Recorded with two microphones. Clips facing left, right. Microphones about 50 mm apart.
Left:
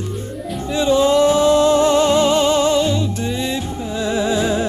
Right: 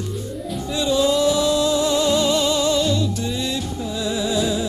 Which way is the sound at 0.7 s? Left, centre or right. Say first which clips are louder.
Left 5 dB; left.